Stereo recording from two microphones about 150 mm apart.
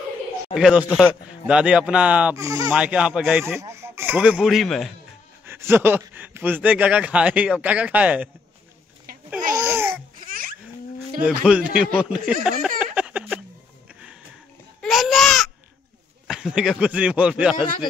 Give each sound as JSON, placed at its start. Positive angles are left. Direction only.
{"t": 0.6, "sound": "speech", "side_deg": -5}
{"t": 2.3, "sound": "speech", "side_deg": -25}
{"t": 2.7, "sound": "speech", "side_deg": -5}
{"t": 3.6, "sound": "speech", "side_deg": -15}
{"t": 5.4, "sound": "speech", "side_deg": -15}
{"t": 9.5, "sound": "babbling", "side_deg": -20}
{"t": 10.2, "sound": "a sound", "side_deg": -70}
{"t": 11.2, "sound": "speech", "side_deg": -5}
{"t": 11.7, "sound": "a sound", "side_deg": -10}
{"t": 14.8, "sound": "baby cry", "side_deg": 0}
{"t": 16.3, "sound": "speech", "side_deg": -5}